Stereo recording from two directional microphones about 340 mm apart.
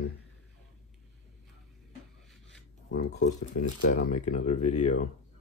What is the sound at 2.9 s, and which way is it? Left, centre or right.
Speech, left.